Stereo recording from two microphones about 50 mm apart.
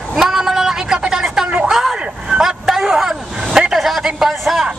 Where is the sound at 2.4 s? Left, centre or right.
Centre.